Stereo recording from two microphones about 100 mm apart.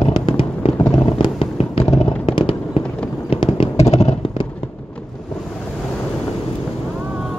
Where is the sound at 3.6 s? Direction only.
90° left.